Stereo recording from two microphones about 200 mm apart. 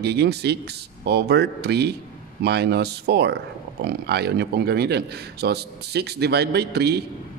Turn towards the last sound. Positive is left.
turn(degrees=-55)  # may be behind; listen again after turning